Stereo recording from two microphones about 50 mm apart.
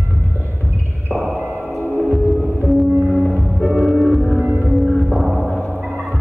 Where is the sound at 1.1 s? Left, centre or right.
Centre.